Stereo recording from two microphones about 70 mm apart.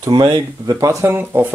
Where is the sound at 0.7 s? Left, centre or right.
Right.